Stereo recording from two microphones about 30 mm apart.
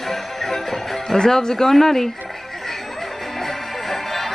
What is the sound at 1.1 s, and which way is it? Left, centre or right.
Speech, left.